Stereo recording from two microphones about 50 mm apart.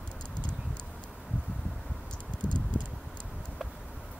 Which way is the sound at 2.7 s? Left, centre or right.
Right.